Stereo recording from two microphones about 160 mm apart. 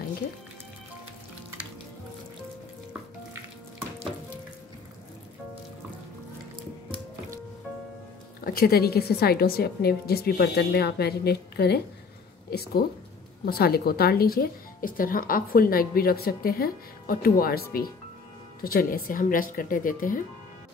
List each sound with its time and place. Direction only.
8.5 s speech: 70° left (ahead or behind); by 11.8 s 90° left
12.4 s speech: 75° left (ahead or behind); by 20.2 s 60° left (ahead or behind)